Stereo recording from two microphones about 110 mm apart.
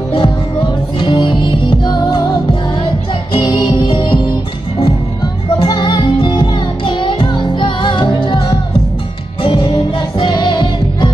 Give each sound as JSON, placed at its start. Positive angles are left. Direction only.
{"t": 0.1, "sound": "music", "side_deg": 50}
{"t": 3.3, "sound": "music", "side_deg": 40}